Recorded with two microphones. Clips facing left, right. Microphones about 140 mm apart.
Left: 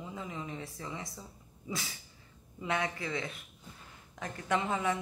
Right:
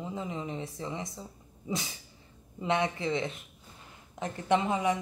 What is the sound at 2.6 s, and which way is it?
A woman's voice, 25° right (ahead or behind).